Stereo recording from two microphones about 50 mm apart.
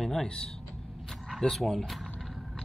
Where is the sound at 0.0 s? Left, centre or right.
Centre.